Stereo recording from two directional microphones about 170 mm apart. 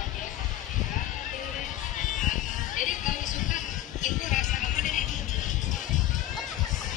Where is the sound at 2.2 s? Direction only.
50° left (ahead or behind).